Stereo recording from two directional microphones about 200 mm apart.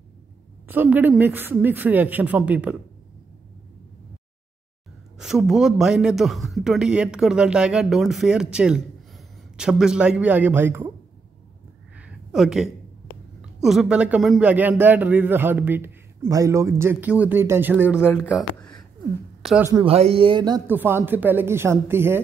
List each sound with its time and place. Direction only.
0.7 s a man's voice: 10° right (ahead or behind)
5.1 s a man's voice: centre (ahead or behind)
12.0 s a sound: 5° right (ahead or behind)
13.4 s a man's voice: centre (ahead or behind)
18.0 s speech: 10° left (ahead or behind)
19.4 s speech: 5° right (ahead or behind)
19.7 s a man's voice: 25° right (ahead or behind); by 22.2 s 10° right (ahead or behind)